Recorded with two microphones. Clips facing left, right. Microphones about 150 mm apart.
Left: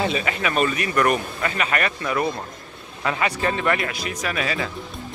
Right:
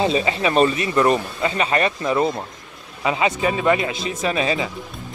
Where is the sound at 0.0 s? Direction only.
25° right (ahead or behind).